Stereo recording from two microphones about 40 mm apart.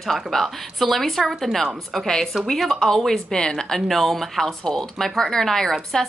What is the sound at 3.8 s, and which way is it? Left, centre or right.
Speech, centre.